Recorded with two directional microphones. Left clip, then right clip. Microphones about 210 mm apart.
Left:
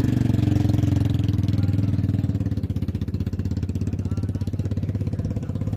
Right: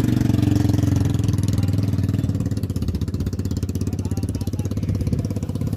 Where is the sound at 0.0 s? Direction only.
45° right (ahead or behind).